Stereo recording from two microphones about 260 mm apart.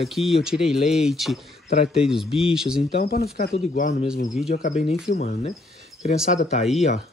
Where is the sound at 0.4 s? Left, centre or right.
Centre.